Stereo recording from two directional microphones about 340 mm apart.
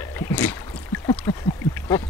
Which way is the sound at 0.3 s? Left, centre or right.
Centre.